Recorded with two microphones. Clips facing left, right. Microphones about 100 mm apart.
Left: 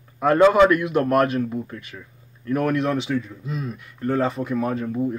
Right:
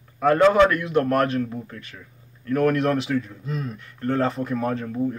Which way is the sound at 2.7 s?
Centre (ahead or behind).